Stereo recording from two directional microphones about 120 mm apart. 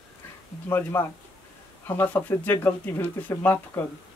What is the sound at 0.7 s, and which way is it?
Speech, 15° left (ahead or behind).